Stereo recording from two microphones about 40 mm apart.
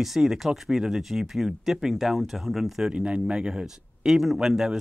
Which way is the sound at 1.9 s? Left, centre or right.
Centre.